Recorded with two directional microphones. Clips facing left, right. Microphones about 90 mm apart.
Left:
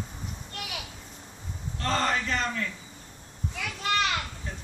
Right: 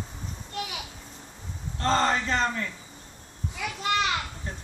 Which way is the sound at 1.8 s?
30° right (ahead or behind).